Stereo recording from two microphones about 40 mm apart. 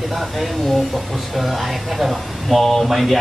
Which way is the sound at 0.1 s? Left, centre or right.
Centre.